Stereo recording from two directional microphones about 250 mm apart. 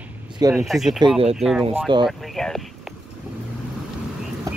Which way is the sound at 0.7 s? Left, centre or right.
Centre.